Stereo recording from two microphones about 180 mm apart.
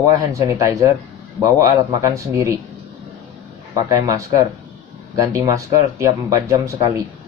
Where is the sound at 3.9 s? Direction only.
15° right (ahead or behind).